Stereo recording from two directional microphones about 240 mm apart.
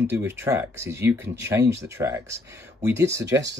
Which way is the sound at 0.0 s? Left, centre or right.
Centre.